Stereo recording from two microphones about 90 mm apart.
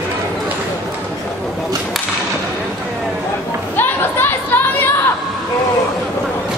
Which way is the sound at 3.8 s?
25° left (ahead or behind).